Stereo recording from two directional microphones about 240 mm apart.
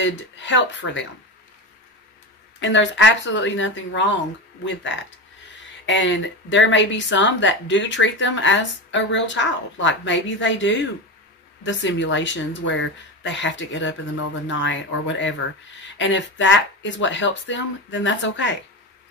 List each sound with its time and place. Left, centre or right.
0.0 s speech: left
2.6 s speech: left
5.9 s speech: left